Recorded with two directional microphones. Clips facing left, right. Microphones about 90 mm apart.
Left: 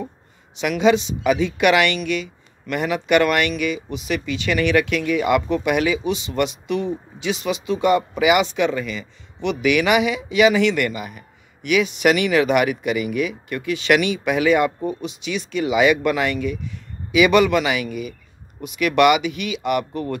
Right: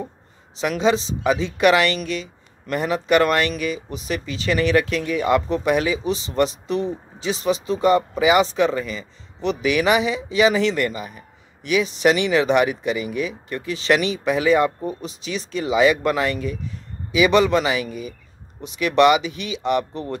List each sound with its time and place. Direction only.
0.6 s speech: 35° right (ahead or behind)